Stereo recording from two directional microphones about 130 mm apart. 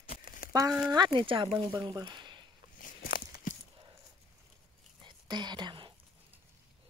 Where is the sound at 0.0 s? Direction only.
90° left.